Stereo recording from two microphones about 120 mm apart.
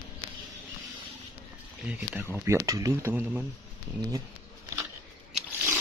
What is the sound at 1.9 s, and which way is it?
Speech, 10° right (ahead or behind).